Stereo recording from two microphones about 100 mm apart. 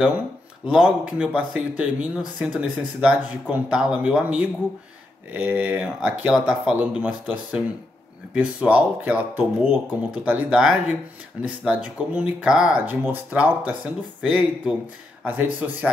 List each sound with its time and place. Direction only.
0.7 s speech: 10° right (ahead or behind)
5.9 s speech: 5° right (ahead or behind)